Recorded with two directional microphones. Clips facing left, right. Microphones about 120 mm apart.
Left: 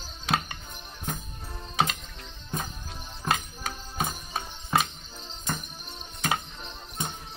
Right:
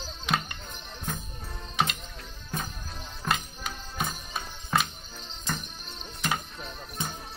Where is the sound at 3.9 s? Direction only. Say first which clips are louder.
Left 2 dB; 35° left (ahead or behind).